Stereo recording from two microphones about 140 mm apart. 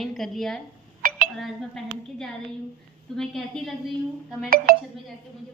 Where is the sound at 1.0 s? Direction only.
80° right.